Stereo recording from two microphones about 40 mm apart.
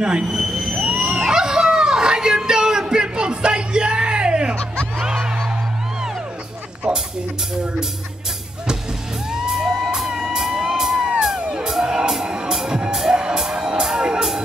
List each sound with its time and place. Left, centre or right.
0.0 s speech: right
0.4 s vehicle: centre
0.8 s a sound: right
5.0 s music: centre
6.8 s music: right
9.3 s music: centre
10.3 s a sound: centre
10.8 s music: centre
11.8 s music: centre
12.1 s music: centre